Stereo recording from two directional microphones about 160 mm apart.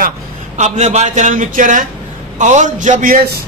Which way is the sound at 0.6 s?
45° right (ahead or behind).